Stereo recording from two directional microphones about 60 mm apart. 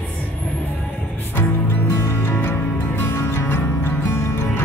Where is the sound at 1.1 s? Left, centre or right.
Left.